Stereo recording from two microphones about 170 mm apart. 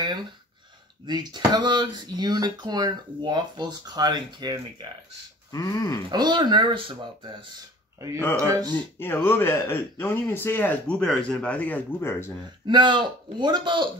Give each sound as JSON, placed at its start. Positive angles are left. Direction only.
{"t": 1.0, "sound": "speech", "side_deg": -25}
{"t": 5.5, "sound": "a sound", "side_deg": 20}
{"t": 6.0, "sound": "speech", "side_deg": -25}
{"t": 8.7, "sound": "speech", "side_deg": 10}
{"t": 12.6, "sound": "speech", "side_deg": -25}